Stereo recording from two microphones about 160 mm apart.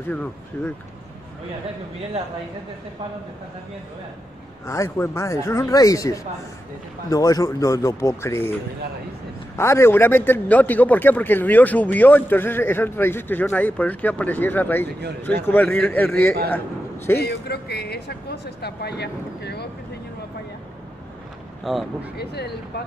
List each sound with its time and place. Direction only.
0.1 s speech: 10° left (ahead or behind)
4.6 s speech: 20° left (ahead or behind)
9.6 s a man's voice: 15° left (ahead or behind)
17.2 s speech: 90° left
21.7 s speech: centre (ahead or behind)
22.1 s speech: 90° left